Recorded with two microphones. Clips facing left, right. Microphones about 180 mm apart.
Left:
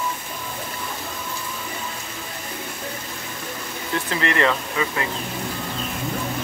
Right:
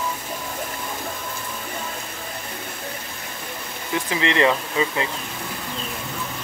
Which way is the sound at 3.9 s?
15° right (ahead or behind).